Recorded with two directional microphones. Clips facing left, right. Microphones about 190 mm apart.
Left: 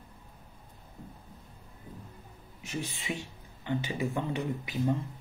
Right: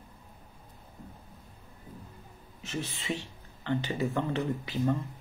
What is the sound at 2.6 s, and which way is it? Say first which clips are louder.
Speech: even; 15° left (ahead or behind).